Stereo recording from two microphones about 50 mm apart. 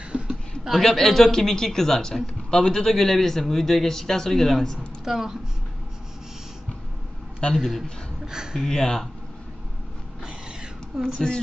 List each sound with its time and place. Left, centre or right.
0.1 s a sound: right
0.7 s speech: centre
5.0 s speech: centre
7.5 s a man's voice: centre
8.6 s speech: centre
10.9 s speech: centre